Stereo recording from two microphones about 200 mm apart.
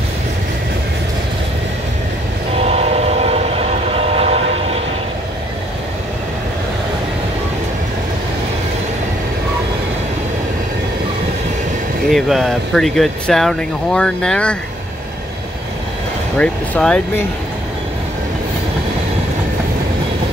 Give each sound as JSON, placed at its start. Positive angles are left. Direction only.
{"t": 2.6, "sound": "train", "side_deg": -30}
{"t": 12.1, "sound": "speech", "side_deg": 0}
{"t": 16.3, "sound": "speech", "side_deg": 5}